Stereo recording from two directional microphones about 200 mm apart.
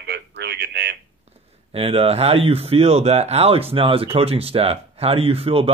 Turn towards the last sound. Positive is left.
turn(degrees=-30)  # may be behind; listen again after turning